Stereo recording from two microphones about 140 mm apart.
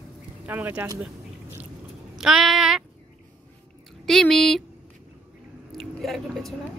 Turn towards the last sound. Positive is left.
turn(degrees=0)  # may be behind; listen again after turning